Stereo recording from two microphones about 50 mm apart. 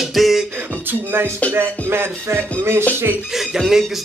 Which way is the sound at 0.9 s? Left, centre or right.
Right.